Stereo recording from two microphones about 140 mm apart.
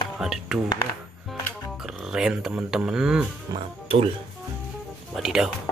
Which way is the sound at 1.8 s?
5° right (ahead or behind).